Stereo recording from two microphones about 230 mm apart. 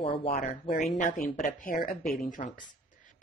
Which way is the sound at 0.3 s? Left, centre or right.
Left.